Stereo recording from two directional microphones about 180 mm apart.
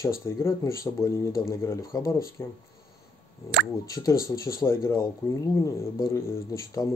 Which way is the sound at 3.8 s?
20° left (ahead or behind).